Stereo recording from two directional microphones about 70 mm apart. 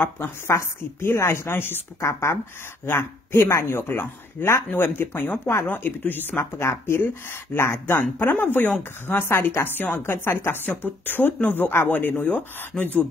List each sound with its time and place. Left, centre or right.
0.5 s speech: left
12.7 s speech: centre